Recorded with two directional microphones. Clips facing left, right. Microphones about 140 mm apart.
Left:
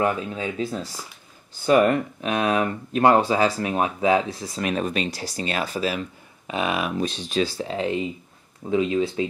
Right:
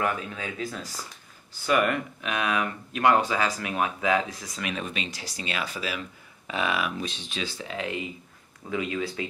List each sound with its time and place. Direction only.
0.0 s speech: 25° left (ahead or behind)
6.4 s speech: 20° left (ahead or behind)
7.0 s speech: 40° left (ahead or behind)